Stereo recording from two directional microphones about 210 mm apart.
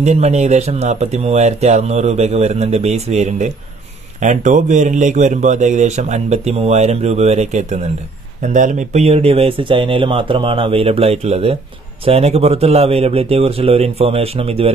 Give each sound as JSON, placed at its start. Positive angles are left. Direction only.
{"t": 0.0, "sound": "speech", "side_deg": -30}